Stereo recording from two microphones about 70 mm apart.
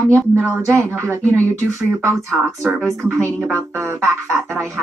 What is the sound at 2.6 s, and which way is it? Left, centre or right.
Speech, centre.